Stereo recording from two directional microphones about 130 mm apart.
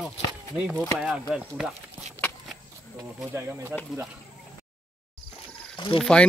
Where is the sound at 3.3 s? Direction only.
20° right (ahead or behind).